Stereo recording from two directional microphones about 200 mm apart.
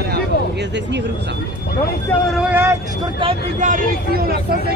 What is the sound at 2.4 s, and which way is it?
Vehicle, 10° right (ahead or behind).